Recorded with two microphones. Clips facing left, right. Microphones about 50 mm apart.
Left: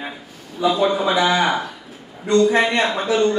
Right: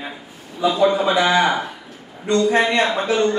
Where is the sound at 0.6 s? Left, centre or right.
Left.